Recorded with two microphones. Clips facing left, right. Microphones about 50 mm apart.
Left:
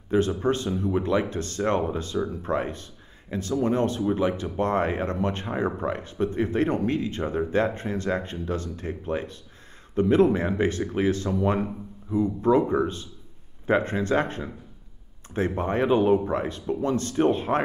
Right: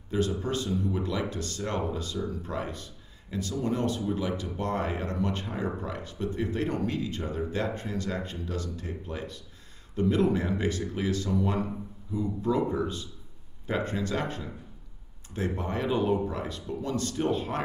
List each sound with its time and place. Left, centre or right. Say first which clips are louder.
0.1 s speech: left 6 dB; left